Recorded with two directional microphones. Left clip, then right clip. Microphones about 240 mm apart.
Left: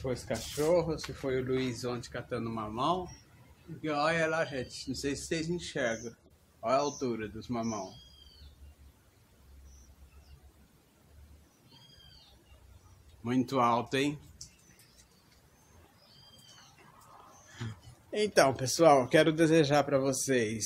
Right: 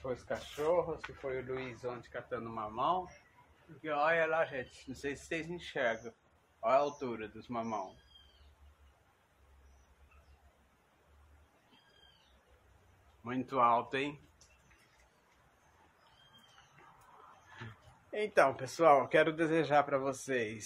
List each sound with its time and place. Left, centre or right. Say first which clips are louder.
0.0 s a man's voice: left 3 dB; centre
13.2 s speech: left 2 dB; centre
18.1 s speech: left 3 dB; centre